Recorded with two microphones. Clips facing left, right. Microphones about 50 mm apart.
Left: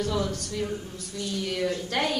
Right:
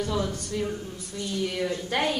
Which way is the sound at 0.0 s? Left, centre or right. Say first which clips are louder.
Even; centre.